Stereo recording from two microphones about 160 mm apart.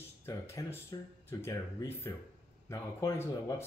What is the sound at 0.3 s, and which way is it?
Speech, 20° left (ahead or behind).